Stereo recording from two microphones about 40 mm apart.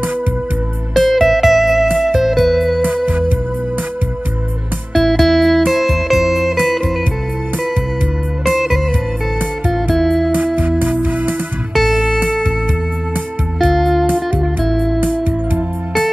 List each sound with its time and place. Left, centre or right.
0.9 s music: centre
3.1 s music: right
4.9 s music: centre
8.5 s music: centre
9.9 s music: centre
10.3 s music: right
11.7 s music: centre
13.6 s music: centre
15.0 s music: right